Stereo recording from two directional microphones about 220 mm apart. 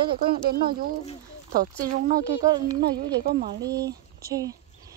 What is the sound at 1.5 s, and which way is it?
Speech, 40° right (ahead or behind).